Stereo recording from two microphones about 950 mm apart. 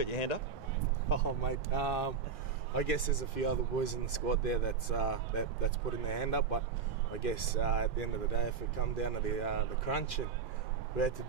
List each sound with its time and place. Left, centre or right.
0.0 s speech: left
1.0 s speech: left